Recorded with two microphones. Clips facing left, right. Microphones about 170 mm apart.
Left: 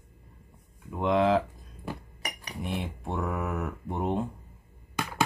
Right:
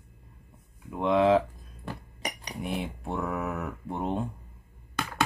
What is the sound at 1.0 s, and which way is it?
Speech, centre (ahead or behind).